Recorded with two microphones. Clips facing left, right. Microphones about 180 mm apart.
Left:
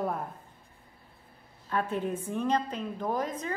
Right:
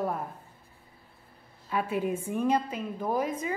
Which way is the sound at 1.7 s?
10° right (ahead or behind).